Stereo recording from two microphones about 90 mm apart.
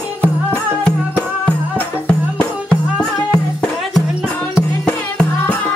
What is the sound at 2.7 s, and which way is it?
Music, 10° left (ahead or behind).